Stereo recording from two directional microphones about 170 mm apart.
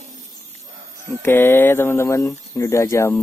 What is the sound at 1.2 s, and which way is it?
Speech, 15° left (ahead or behind).